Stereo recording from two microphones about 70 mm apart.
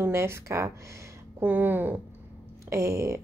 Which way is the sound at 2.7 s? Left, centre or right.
Right.